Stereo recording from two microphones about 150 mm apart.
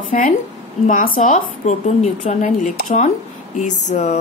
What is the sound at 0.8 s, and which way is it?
Speech, 60° left (ahead or behind).